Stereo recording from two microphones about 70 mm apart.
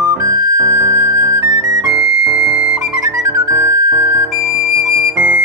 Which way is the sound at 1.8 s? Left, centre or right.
Centre.